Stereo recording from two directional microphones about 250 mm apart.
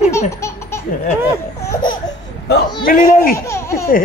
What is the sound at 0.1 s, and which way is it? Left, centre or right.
Laughter, centre.